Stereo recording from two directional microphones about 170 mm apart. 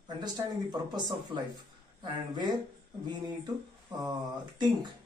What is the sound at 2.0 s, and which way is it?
Speech, 25° right (ahead or behind).